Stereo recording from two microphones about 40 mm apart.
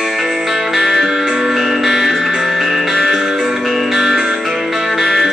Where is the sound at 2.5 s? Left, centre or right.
Centre.